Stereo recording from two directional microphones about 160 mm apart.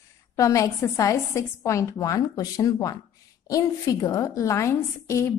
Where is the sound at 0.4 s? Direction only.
20° left (ahead or behind).